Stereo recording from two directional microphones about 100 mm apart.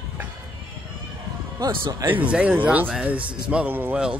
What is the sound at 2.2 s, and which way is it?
Speech, 15° right (ahead or behind).